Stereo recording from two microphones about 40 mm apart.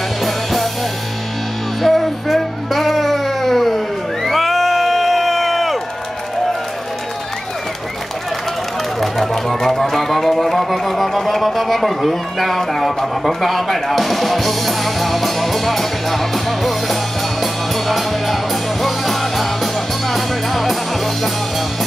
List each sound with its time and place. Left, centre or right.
0.2 s music: centre
1.8 s music: centre
9.0 s music: centre